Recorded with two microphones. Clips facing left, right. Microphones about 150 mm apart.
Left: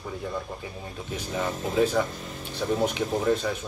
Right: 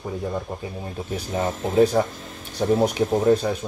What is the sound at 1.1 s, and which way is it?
Speech, 35° right (ahead or behind).